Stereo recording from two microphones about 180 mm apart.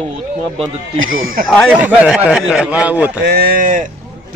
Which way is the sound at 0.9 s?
90° right.